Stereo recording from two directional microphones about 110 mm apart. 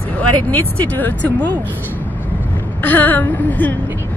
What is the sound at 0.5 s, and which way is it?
Speech, 15° left (ahead or behind).